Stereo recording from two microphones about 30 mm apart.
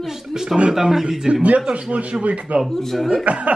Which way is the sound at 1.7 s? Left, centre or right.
Right.